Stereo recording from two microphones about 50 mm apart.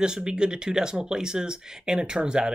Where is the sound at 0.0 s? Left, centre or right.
Centre.